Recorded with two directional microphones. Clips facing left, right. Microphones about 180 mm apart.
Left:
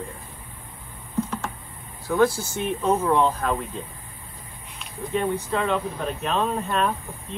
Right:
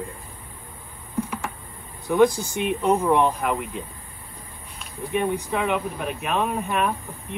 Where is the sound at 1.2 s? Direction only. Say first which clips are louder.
Left 1 dB; 10° right (ahead or behind).